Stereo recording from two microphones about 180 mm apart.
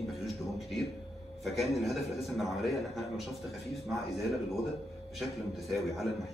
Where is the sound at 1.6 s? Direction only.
Centre (ahead or behind).